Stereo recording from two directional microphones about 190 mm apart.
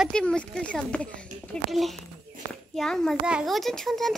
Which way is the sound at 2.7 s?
Centre (ahead or behind).